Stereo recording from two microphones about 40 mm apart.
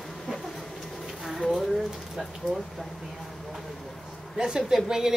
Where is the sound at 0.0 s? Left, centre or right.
Centre.